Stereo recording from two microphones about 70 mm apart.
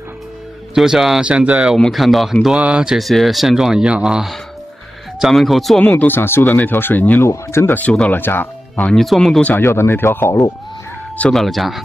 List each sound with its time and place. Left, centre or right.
0.7 s speech: centre
1.2 s speech: centre
1.8 s speech: centre
2.4 s speech: centre
3.0 s speech: centre
5.8 s speech: left
7.2 s speech: left
7.7 s speech: left
8.9 s speech: centre
9.6 s speech: left
11.3 s speech: centre